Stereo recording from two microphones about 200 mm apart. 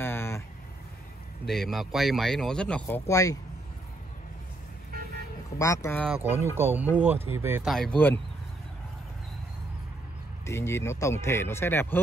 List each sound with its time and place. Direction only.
0.0 s vehicle: 10° left (ahead or behind)
1.4 s speech: centre (ahead or behind)
3.1 s speech: 15° left (ahead or behind)
5.6 s speech: 15° left (ahead or behind)
6.0 s speech: 10° right (ahead or behind)
7.7 s speech: 5° left (ahead or behind)
10.4 s speech: 15° left (ahead or behind)